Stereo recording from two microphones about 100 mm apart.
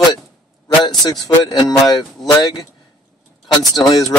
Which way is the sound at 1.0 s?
40° left (ahead or behind).